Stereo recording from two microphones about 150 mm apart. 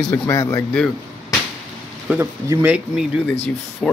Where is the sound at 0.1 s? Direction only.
20° left (ahead or behind).